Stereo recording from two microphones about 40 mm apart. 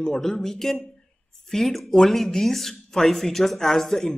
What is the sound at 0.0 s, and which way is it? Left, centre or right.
Speech, centre.